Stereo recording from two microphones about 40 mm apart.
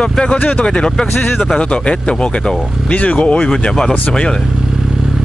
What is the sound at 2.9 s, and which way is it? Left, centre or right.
Speech, left.